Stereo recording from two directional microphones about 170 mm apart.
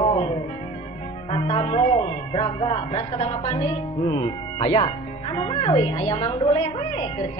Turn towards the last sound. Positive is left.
turn(degrees=30)  # may be behind; listen again after turning